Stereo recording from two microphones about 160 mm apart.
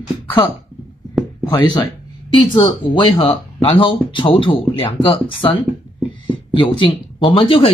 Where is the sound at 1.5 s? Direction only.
25° left (ahead or behind).